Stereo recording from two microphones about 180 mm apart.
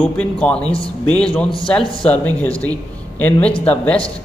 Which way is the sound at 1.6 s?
5° left (ahead or behind).